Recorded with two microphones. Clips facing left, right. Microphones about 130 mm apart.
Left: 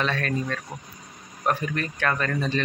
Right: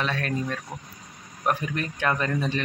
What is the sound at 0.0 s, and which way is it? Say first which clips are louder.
Speech: left 1 dB; 10° right (ahead or behind).